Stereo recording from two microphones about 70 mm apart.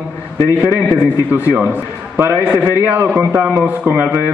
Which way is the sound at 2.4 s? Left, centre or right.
Right.